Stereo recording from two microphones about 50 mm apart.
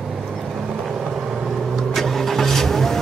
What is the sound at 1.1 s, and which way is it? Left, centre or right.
Vehicle, centre.